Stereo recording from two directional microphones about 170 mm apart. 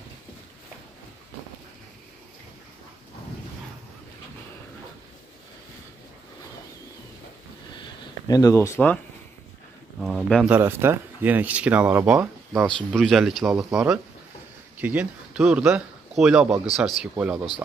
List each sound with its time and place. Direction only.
8.3 s speech: 20° left (ahead or behind)
9.9 s speech: centre (ahead or behind)
12.6 s speech: 5° left (ahead or behind)
14.8 s speech: 10° right (ahead or behind)